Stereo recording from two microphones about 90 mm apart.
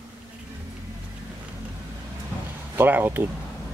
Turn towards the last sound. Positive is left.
turn(degrees=-20)  # may be behind; listen again after turning